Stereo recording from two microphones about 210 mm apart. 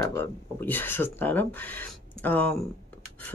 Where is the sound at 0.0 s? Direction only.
10° left (ahead or behind).